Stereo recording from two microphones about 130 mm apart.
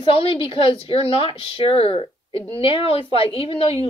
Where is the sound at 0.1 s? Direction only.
45° left (ahead or behind).